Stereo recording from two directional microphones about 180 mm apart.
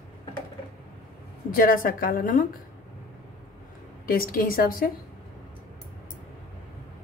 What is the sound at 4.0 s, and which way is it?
Speech, 55° left (ahead or behind).